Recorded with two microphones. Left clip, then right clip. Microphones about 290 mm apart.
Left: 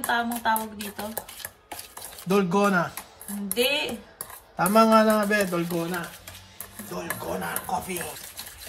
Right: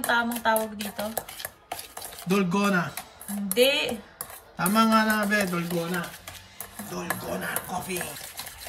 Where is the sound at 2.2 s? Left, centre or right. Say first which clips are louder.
Left 3 dB; centre.